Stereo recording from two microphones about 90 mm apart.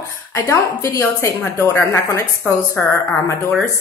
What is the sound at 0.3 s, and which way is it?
A woman's voice, 30° left (ahead or behind).